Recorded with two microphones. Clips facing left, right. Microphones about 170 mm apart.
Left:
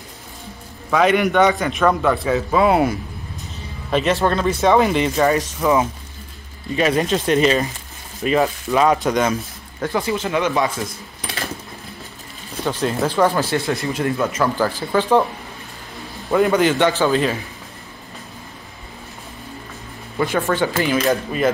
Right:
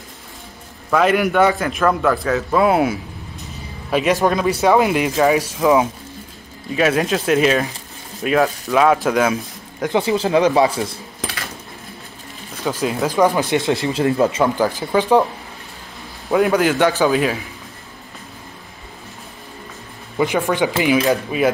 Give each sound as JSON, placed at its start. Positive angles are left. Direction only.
{"t": 0.8, "sound": "a man's voice", "side_deg": 0}
{"t": 9.8, "sound": "speech", "side_deg": -25}
{"t": 12.6, "sound": "speech", "side_deg": -10}
{"t": 14.4, "sound": "speech", "side_deg": -15}
{"t": 16.3, "sound": "speech", "side_deg": -5}
{"t": 20.2, "sound": "speech", "side_deg": -15}